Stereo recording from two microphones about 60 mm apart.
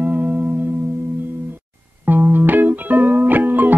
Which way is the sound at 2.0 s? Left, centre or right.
Right.